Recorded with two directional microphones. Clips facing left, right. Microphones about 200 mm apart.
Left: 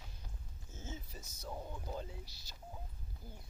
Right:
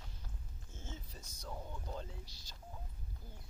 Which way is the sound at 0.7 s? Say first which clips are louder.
Left 3 dB; 10° left (ahead or behind).